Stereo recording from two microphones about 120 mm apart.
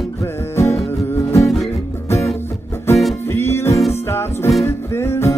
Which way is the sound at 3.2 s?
20° left (ahead or behind).